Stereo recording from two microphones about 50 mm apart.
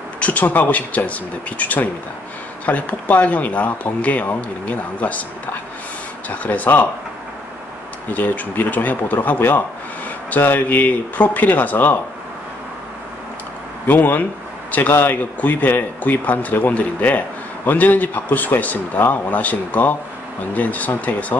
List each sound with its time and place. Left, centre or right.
0.2 s speech: left
8.1 s speech: left
13.8 s speech: left